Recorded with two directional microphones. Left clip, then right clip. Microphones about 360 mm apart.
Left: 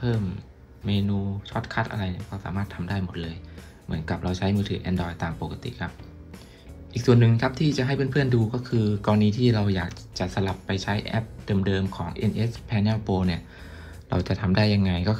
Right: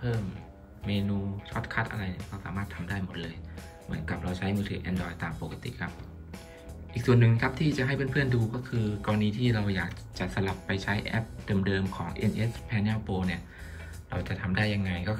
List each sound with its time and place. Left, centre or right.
1.5 s speech: centre